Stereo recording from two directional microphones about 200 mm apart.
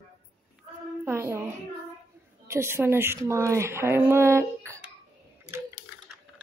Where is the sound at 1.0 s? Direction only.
10° right (ahead or behind).